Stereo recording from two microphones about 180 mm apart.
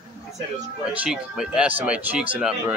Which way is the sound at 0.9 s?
5° right (ahead or behind).